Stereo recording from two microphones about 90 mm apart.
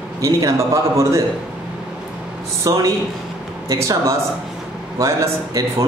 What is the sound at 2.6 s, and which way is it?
A man's voice, 40° right (ahead or behind).